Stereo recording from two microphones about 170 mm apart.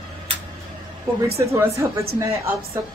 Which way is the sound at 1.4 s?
15° right (ahead or behind).